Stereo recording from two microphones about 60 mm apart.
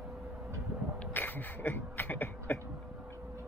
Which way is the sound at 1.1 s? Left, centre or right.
Left.